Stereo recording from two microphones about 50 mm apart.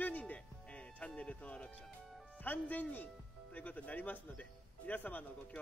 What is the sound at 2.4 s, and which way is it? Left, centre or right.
Music, left.